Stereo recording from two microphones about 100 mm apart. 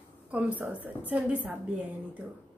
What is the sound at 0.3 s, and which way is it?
A woman's voice, 15° right (ahead or behind).